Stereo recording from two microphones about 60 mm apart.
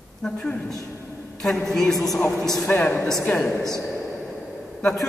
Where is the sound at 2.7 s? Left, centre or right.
Left.